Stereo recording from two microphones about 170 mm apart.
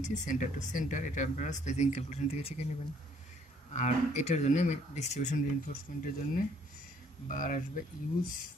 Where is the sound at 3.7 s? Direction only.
40° left (ahead or behind).